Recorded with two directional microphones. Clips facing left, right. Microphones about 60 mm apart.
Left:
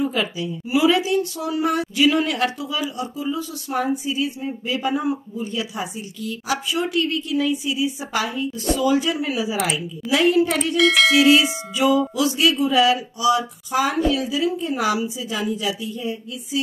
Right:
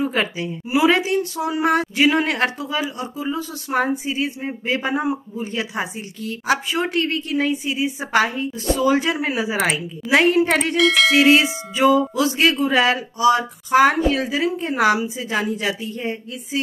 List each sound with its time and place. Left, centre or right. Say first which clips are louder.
0.0 s a woman's voice: right 1 dB; right
5.0 s a man's voice: right 1 dB; right
5.5 s speech: right 3 dB; right
10.8 s music: left 1 dB; centre
11.7 s speech: right 3 dB; right